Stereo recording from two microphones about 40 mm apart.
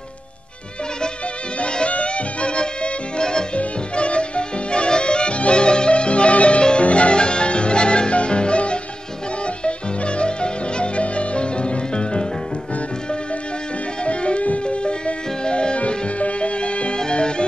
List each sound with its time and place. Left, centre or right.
1.6 s music: left
14.0 s music: left